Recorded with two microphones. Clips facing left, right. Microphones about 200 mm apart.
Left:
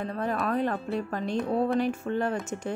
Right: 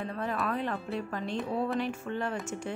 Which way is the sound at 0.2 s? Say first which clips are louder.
Left 5 dB; 40° left (ahead or behind).